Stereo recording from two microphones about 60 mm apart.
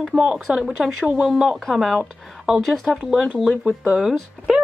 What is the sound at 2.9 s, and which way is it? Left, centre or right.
Speech, centre.